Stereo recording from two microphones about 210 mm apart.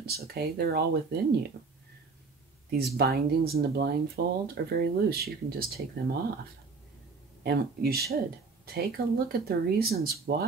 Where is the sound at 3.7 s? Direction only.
50° right (ahead or behind).